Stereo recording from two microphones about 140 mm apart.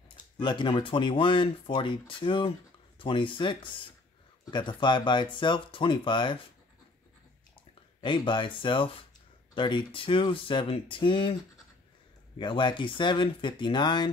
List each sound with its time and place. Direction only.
0.4 s speech: 35° left (ahead or behind)
8.0 s speech: 35° left (ahead or behind)
12.4 s speech: 35° left (ahead or behind)